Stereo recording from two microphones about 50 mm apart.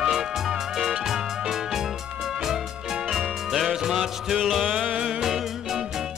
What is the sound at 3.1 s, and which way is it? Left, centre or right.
Music, centre.